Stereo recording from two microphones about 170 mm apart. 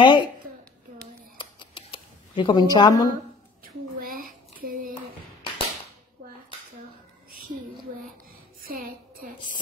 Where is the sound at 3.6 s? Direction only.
60° right (ahead or behind).